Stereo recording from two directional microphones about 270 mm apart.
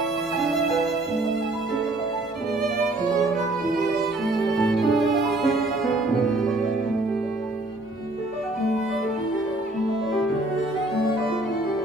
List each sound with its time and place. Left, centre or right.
4.3 s music: centre